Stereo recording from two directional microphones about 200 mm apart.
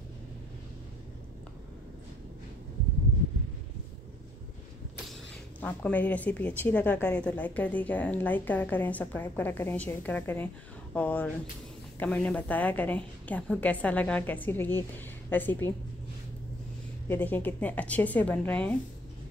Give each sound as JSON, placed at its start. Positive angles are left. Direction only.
{"t": 5.6, "sound": "a woman's voice", "side_deg": 10}
{"t": 17.1, "sound": "a woman's voice", "side_deg": 10}